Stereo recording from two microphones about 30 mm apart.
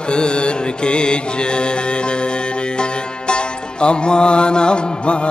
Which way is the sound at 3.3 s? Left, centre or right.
Left.